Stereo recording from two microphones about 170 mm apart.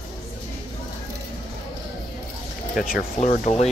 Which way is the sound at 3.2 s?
40° left (ahead or behind).